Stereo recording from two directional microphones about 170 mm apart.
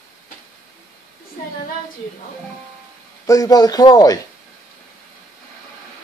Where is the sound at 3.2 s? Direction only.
20° left (ahead or behind).